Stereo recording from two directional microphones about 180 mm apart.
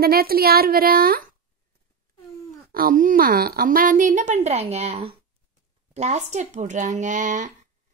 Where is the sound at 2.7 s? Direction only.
50° right (ahead or behind).